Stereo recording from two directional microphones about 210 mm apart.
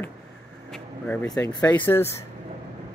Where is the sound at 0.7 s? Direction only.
5° left (ahead or behind).